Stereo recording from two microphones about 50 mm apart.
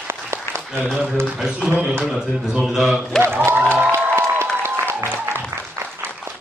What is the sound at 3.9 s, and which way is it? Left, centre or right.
Applause, right.